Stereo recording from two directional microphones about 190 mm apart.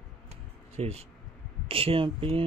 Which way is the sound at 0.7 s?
35° right (ahead or behind).